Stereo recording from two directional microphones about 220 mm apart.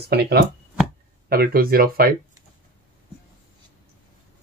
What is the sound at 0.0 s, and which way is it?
Speech, 45° right (ahead or behind).